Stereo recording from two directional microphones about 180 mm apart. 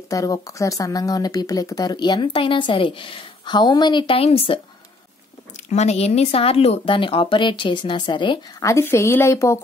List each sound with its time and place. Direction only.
0.1 s speech: 20° left (ahead or behind)
5.7 s speech: 40° left (ahead or behind); by 9.6 s 15° left (ahead or behind)